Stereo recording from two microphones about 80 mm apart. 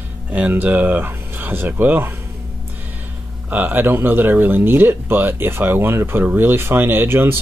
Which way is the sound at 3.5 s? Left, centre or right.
Right.